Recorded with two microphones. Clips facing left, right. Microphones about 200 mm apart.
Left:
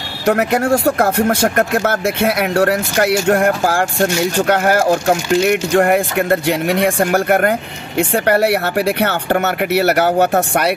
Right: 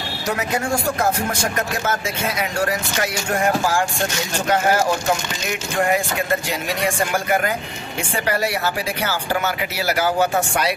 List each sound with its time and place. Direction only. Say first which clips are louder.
0.3 s speech: left 9 dB; 60° left (ahead or behind)